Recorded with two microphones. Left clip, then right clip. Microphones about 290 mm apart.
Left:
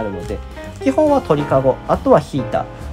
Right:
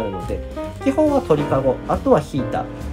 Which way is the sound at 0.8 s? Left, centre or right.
Left.